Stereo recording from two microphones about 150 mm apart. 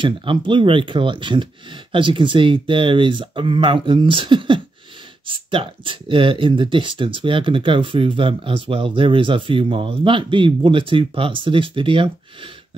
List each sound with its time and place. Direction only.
0.0 s speech: 35° right (ahead or behind)